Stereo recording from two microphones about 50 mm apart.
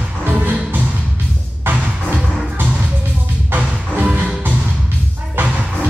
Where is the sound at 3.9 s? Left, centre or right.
Right.